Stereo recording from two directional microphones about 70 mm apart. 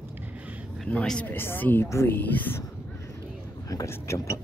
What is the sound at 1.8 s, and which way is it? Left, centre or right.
Speech, left.